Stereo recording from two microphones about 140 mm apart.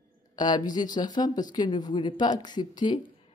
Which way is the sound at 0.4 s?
30° left (ahead or behind).